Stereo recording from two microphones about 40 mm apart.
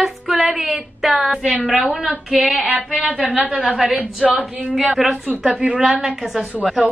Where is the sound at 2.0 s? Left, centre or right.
Right.